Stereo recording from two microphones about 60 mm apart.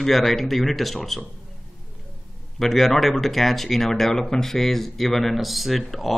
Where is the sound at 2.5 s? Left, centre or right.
Centre.